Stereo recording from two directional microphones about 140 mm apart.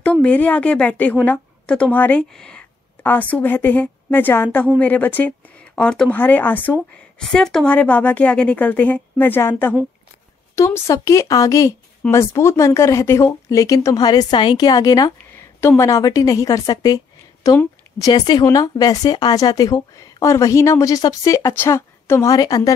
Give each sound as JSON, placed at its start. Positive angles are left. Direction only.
{"t": 0.0, "sound": "speech", "side_deg": 10}